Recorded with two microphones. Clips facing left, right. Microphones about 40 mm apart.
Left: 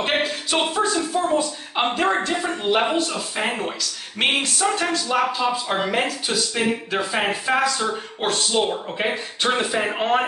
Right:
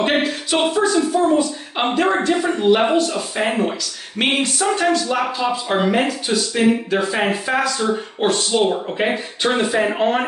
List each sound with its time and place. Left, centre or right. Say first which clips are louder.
0.0 s a sound: right 4 dB; centre
1.1 s a woman's voice: right 5 dB; centre
1.8 s speech: right 3 dB; centre